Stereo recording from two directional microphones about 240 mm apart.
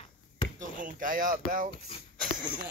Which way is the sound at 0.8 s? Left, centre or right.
Right.